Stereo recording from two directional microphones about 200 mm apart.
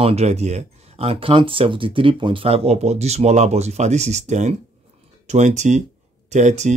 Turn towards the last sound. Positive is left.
turn(degrees=-35)  # may be behind; listen again after turning